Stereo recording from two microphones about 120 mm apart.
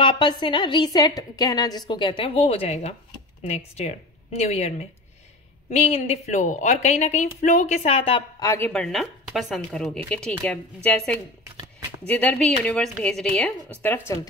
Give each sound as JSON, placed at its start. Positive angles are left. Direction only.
{"t": 0.0, "sound": "a woman's voice", "side_deg": 40}
{"t": 8.4, "sound": "speech", "side_deg": 25}
{"t": 8.6, "sound": "a woman's voice", "side_deg": 5}
{"t": 13.8, "sound": "speech", "side_deg": 20}